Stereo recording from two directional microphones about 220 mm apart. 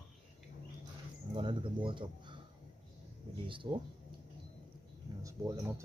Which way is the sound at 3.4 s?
20° right (ahead or behind).